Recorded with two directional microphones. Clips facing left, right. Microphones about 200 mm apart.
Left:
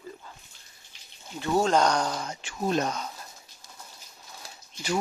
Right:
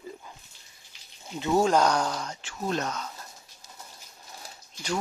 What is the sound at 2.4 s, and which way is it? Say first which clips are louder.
Speech: left 6 dB; 15° left (ahead or behind).